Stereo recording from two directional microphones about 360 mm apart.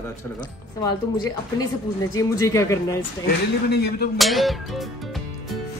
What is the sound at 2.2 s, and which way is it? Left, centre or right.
Speech, centre.